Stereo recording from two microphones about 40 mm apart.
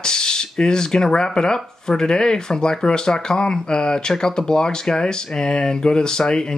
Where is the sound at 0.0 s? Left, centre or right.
Centre.